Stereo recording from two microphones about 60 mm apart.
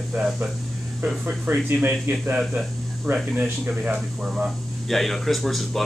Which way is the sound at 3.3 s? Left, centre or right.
Right.